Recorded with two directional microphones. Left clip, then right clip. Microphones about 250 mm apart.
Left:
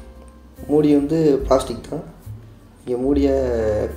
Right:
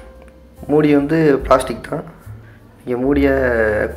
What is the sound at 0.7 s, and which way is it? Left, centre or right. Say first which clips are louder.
Speech: right 2 dB; centre.